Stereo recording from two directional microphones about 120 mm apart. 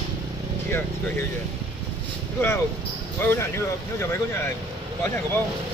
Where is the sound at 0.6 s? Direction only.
20° left (ahead or behind).